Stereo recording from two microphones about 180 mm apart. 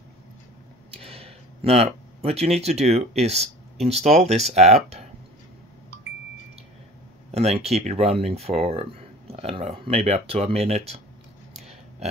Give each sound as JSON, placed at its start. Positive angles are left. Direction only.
{"t": 0.9, "sound": "speech", "side_deg": -35}
{"t": 7.2, "sound": "speech", "side_deg": -35}